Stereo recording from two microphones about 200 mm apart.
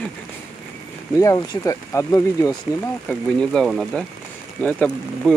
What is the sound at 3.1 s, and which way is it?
Speech, 5° left (ahead or behind).